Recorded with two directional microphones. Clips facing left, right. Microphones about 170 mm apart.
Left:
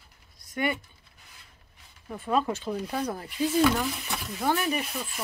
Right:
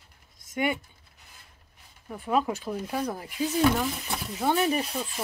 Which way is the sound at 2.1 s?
10° right (ahead or behind).